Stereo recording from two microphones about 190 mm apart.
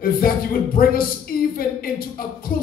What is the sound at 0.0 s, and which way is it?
Speech, 50° left (ahead or behind).